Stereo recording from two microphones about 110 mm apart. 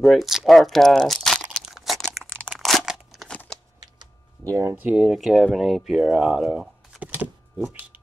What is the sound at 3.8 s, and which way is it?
Typing, 35° right (ahead or behind).